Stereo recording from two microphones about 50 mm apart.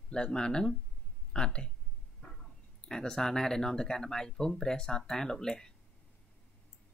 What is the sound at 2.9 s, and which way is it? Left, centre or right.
Speech, centre.